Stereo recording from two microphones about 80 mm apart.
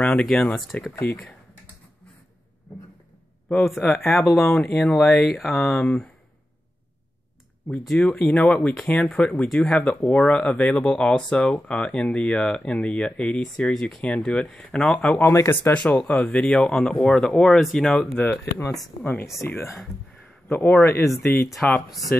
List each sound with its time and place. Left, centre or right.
0.0 s a sound: centre
0.3 s speech: centre
3.4 s speech: centre
7.8 s speech: centre
8.8 s speech: centre
15.1 s speech: left
15.7 s speech: centre
18.1 s speech: left
18.4 s a man's voice: left
20.8 s speech: left
21.2 s speech: left